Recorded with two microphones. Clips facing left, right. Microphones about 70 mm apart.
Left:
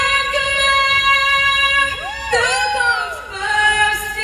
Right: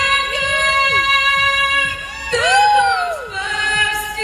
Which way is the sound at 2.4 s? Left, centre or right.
Right.